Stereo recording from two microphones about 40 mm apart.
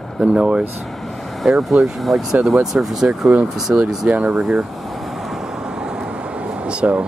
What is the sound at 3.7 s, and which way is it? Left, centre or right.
Speech, right.